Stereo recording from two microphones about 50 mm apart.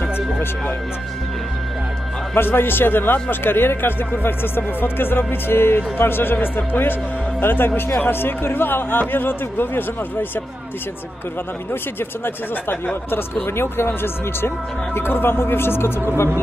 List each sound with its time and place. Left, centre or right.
2.3 s speech: left
13.1 s speech: left